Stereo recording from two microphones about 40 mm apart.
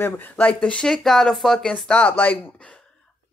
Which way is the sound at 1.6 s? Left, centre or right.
Centre.